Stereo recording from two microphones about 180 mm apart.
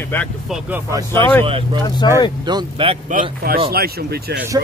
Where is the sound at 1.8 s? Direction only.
25° left (ahead or behind).